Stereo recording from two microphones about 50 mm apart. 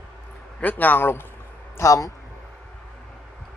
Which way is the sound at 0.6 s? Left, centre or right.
Left.